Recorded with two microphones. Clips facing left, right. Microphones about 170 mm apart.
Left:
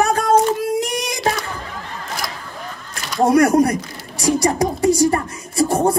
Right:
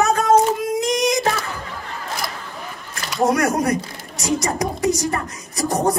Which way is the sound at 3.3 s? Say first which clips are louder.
Left 6 dB; 30° left (ahead or behind).